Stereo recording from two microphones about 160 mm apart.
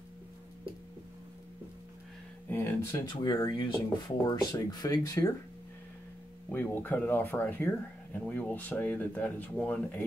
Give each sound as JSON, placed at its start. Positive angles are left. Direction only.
{"t": 2.5, "sound": "speech", "side_deg": 20}
{"t": 6.5, "sound": "speech", "side_deg": 10}